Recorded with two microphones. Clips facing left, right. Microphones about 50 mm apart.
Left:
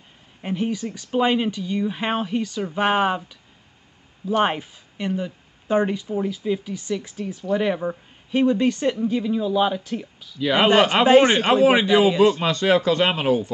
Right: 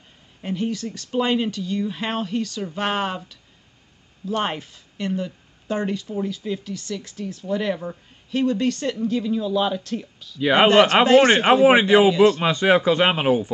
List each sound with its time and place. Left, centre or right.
0.4 s speech: centre
10.4 s speech: centre